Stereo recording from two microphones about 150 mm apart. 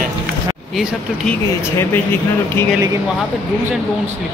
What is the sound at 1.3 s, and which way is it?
Speech, 15° left (ahead or behind).